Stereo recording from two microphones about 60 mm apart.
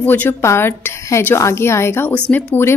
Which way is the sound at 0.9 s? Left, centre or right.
Left.